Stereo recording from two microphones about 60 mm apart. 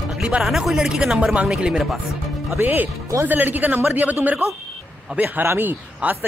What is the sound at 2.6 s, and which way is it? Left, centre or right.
Speech, right.